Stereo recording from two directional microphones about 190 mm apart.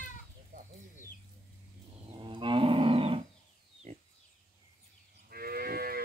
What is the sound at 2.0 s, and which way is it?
Livestock, 25° right (ahead or behind).